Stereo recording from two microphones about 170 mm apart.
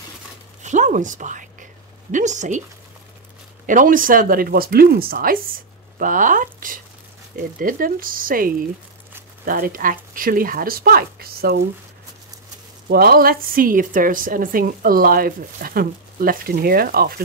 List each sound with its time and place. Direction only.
0.6 s a sound: 45° right (ahead or behind)
2.1 s speech: 45° right (ahead or behind)
3.6 s a woman's voice: 50° right (ahead or behind)
12.8 s a woman's voice: 65° right (ahead or behind)